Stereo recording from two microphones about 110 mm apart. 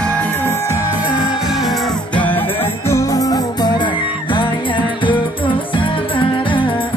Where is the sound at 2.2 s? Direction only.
15° left (ahead or behind); by 6.7 s 50° left (ahead or behind).